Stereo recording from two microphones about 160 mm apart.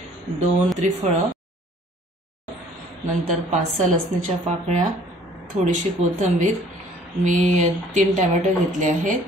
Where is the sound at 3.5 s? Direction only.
55° right (ahead or behind).